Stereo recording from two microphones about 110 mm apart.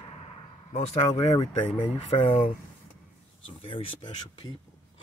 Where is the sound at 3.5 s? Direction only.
60° left (ahead or behind).